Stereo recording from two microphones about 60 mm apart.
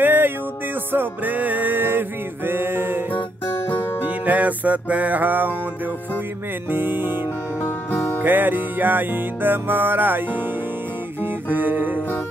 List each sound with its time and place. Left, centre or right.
0.0 s music: right
3.4 s music: left
4.0 s music: right
6.7 s music: right
7.6 s music: left
8.2 s music: right